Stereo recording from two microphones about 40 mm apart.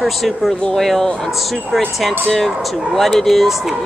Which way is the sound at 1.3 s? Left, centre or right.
Centre.